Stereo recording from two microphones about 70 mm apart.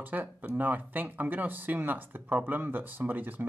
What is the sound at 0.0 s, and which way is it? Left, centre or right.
Speech, right.